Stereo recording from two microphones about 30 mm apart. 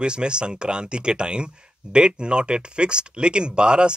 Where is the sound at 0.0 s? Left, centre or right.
Right.